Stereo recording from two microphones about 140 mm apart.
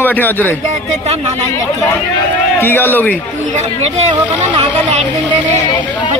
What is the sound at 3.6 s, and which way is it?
Speech, 50° right (ahead or behind).